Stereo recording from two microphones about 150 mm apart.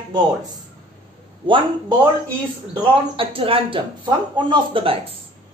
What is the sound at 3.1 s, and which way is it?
Speech, 35° right (ahead or behind).